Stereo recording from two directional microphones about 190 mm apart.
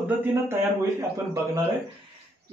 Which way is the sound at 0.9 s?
15° right (ahead or behind).